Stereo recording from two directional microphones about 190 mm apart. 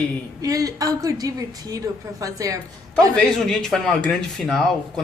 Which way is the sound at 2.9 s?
5° left (ahead or behind).